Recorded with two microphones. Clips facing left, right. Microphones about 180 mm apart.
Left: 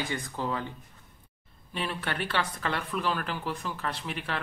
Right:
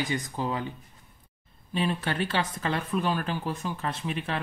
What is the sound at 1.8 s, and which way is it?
Speech, 20° right (ahead or behind).